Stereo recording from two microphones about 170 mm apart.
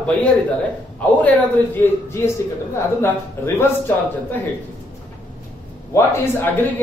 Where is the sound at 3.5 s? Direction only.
15° left (ahead or behind).